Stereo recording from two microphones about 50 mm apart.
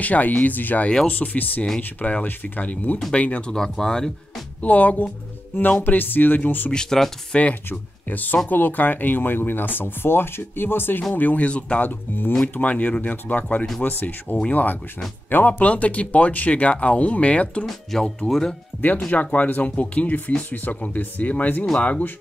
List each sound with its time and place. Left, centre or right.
0.0 s speech: left
3.5 s speech: centre
4.6 s speech: left
6.7 s speech: centre
7.3 s speech: left
11.1 s speech: left
17.9 s speech: centre
18.9 s speech: left
21.7 s speech: left